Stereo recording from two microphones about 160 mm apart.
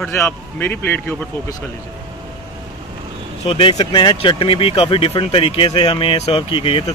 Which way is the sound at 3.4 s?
35° left (ahead or behind).